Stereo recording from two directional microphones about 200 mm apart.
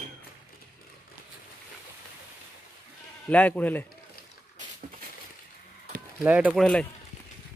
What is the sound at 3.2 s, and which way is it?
Speech, 10° left (ahead or behind).